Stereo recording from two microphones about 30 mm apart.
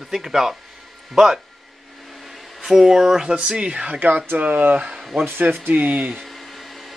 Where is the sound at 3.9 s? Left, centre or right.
Right.